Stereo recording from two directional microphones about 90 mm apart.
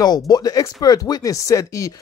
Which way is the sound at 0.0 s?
50° left (ahead or behind).